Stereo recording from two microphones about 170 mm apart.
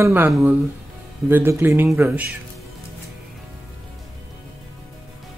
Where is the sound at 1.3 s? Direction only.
10° right (ahead or behind).